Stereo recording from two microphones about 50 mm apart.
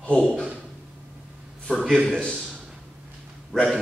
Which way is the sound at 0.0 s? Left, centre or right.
Left.